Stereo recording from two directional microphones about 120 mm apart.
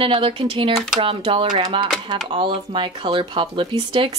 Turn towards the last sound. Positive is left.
turn(degrees=-50)  # may be behind; listen again after turning